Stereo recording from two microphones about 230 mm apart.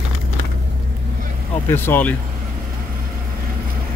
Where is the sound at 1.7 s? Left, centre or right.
Centre.